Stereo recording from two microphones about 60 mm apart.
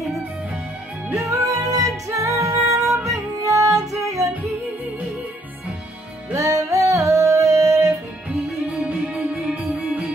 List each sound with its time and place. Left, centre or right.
1.2 s music: right
2.0 s music: right
3.1 s music: right
6.3 s music: right
8.8 s music: centre